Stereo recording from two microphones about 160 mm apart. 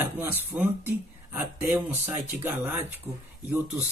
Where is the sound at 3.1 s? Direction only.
Centre (ahead or behind).